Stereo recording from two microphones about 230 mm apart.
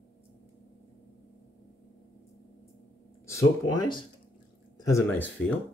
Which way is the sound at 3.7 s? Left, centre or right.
Centre.